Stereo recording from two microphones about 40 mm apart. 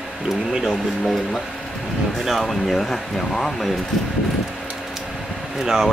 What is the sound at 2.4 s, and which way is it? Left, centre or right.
Speech, centre.